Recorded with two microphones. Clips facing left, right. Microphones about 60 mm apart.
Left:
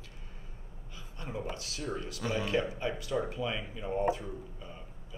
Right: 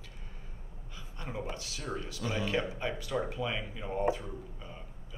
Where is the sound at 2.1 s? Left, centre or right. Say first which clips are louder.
Left 1 dB; left.